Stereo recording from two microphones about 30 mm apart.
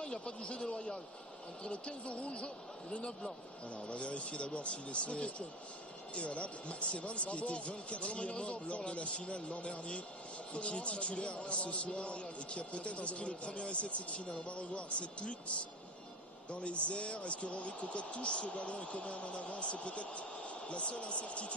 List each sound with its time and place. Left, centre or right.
0.0 s speech: left
3.7 s speech: left
16.5 s speech: left